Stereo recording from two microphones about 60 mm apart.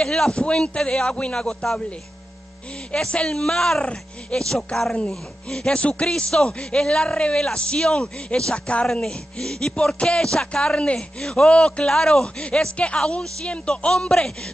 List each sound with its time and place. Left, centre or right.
0.0 s a man's voice: centre
3.8 s speech: centre
4.4 s a man's voice: centre